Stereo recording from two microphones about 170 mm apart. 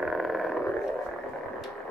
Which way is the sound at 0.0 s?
Centre (ahead or behind).